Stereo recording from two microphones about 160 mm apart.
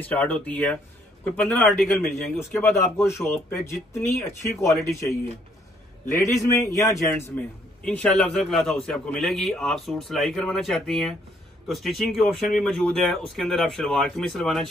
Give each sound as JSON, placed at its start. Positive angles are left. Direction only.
{"t": 0.0, "sound": "a man's voice", "side_deg": 10}
{"t": 2.3, "sound": "speech", "side_deg": 15}
{"t": 7.8, "sound": "a man's voice", "side_deg": 5}